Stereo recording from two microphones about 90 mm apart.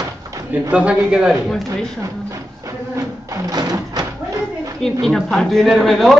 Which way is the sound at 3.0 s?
40° right (ahead or behind).